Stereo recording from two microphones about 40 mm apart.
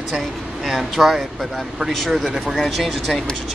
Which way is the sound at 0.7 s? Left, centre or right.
Centre.